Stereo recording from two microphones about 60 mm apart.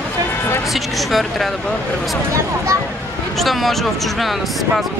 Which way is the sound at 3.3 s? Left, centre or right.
Centre.